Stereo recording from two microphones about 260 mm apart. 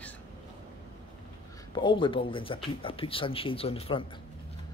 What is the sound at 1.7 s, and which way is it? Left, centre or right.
Speech, centre.